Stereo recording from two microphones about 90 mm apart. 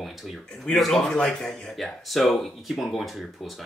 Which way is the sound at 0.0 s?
Centre (ahead or behind).